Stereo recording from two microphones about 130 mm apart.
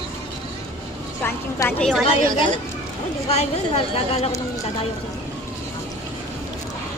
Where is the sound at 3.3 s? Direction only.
55° left (ahead or behind).